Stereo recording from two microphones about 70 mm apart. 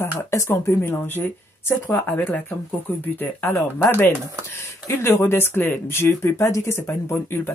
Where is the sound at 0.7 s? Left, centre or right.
Left.